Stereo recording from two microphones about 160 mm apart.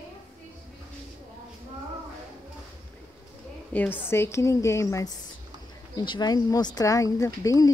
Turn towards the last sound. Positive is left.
turn(degrees=20)  # may be behind; listen again after turning